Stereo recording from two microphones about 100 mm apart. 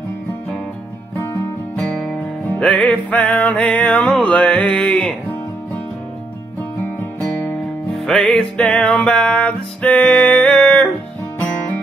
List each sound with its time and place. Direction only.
1.8 s music: 5° left (ahead or behind)
6.8 s music: 20° left (ahead or behind)
7.9 s music: centre (ahead or behind)